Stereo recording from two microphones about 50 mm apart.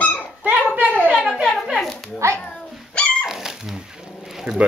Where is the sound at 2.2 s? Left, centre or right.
Right.